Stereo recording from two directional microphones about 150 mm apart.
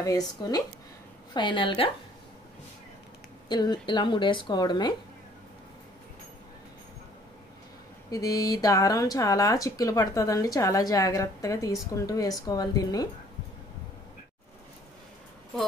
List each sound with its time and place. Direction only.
1.3 s a woman's voice: 35° left (ahead or behind)
3.4 s a woman's voice: 30° left (ahead or behind)
8.1 s speech: 25° left (ahead or behind)